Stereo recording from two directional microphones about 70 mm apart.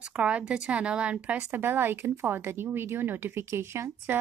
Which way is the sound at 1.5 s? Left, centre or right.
Right.